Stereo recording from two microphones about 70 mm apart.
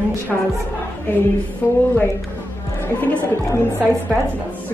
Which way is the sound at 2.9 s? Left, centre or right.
Left.